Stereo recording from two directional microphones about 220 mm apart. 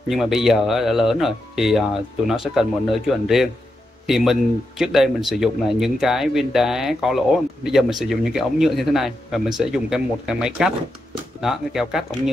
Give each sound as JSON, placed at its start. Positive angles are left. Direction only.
{"t": 0.1, "sound": "speech", "side_deg": 0}